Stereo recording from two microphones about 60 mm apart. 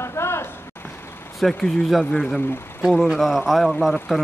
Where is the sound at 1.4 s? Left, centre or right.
Centre.